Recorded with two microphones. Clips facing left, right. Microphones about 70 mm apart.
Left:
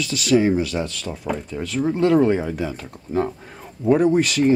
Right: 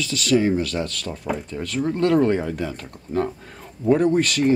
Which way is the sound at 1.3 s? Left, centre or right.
Centre.